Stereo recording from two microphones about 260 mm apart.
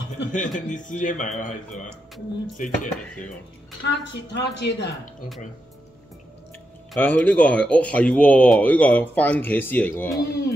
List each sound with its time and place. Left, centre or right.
0.3 s a man's voice: left
3.8 s a woman's voice: left
6.9 s speech: centre